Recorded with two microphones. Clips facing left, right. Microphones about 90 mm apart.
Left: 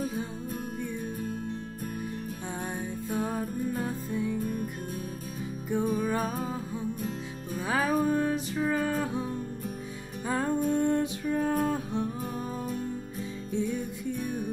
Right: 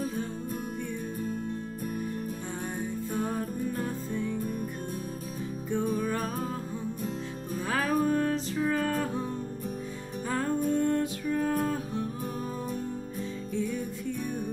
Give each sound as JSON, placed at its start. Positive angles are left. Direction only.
{"t": 3.1, "sound": "music", "side_deg": 5}
{"t": 5.7, "sound": "music", "side_deg": 5}
{"t": 7.5, "sound": "music", "side_deg": 5}
{"t": 10.7, "sound": "music", "side_deg": 20}
{"t": 11.2, "sound": "music", "side_deg": 40}